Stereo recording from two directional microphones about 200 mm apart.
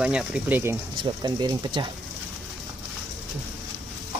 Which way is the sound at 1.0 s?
20° right (ahead or behind).